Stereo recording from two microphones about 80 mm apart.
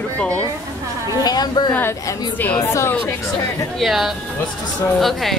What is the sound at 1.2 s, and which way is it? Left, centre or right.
Speech, left.